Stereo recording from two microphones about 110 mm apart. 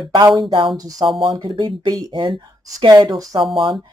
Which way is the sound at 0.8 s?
35° right (ahead or behind).